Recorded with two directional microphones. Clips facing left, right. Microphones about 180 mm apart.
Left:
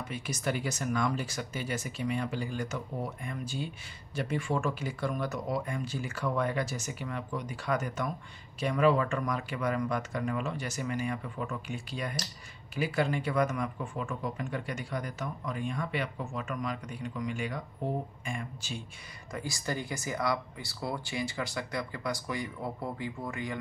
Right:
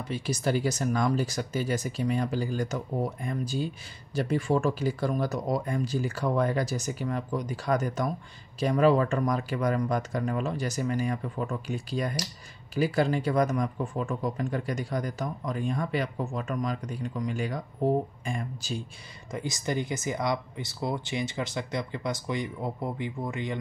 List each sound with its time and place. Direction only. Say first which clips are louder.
0.0 s speech: right 5 dB; 30° right (ahead or behind)
19.3 s speech: right 5 dB; 20° right (ahead or behind)